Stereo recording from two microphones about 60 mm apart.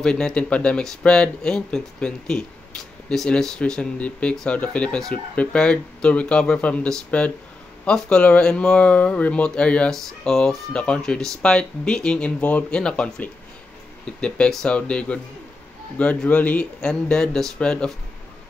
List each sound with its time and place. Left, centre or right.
0.0 s speech: centre
9.8 s speech: centre
12.4 s speech: left
12.7 s speech: centre
14.7 s speech: left
16.3 s speech: left